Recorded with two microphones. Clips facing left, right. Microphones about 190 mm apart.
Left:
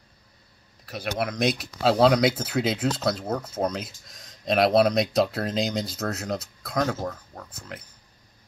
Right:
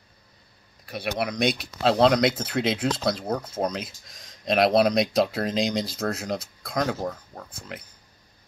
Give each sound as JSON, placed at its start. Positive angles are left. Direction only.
{"t": 0.8, "sound": "speech", "side_deg": 0}